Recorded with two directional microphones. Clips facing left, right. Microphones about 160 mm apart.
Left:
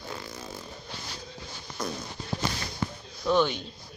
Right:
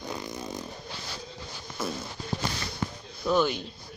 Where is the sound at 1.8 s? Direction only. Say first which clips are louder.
Right 1 dB; 5° right (ahead or behind).